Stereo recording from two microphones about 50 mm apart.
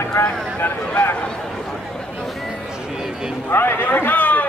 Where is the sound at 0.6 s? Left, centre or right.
Left.